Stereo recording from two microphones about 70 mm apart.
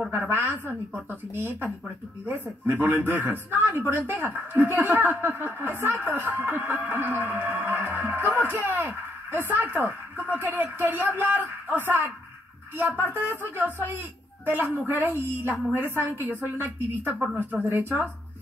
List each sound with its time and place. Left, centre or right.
0.1 s a woman's voice: right